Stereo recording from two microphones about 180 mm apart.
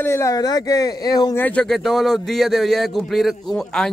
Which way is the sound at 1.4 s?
5° left (ahead or behind).